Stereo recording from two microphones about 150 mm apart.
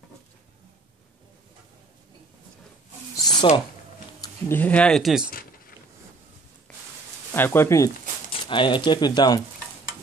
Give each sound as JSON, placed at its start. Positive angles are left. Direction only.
{"t": 3.2, "sound": "a sound", "side_deg": 25}
{"t": 4.2, "sound": "speech", "side_deg": 15}
{"t": 7.3, "sound": "speech", "side_deg": 15}
{"t": 8.3, "sound": "speech", "side_deg": 35}